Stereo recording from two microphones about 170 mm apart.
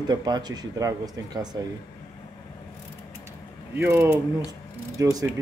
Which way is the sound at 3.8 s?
15° right (ahead or behind).